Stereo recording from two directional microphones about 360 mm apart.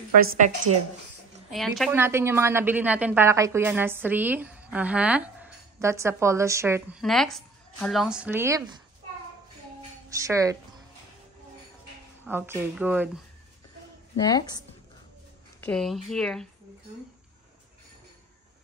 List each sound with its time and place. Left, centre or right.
0.2 s a woman's voice: right
1.5 s a woman's voice: centre
9.8 s a sound: centre
12.3 s a woman's voice: centre
15.6 s a woman's voice: centre